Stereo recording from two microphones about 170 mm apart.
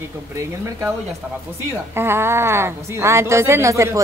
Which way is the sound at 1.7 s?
15° right (ahead or behind).